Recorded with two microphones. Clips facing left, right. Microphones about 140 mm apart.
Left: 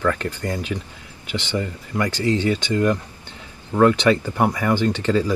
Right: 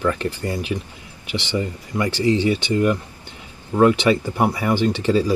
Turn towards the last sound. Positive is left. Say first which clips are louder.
# right 1 dB
turn(degrees=-15)  # may be behind; listen again after turning